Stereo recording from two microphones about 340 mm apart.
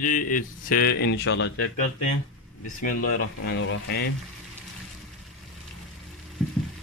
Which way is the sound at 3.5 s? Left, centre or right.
Left.